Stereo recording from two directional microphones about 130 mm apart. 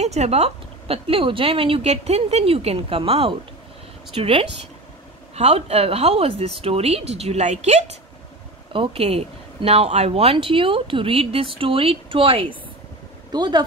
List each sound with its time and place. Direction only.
0.0 s a woman's voice: 55° right (ahead or behind)
8.7 s a woman's voice: 45° right (ahead or behind)
13.3 s speech: 35° right (ahead or behind)